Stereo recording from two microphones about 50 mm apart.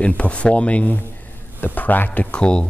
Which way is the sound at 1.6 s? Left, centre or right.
Left.